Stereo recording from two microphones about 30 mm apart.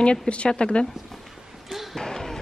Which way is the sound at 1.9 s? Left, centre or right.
Centre.